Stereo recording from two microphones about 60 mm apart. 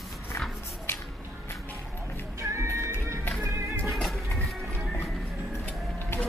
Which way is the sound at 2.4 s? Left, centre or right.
Right.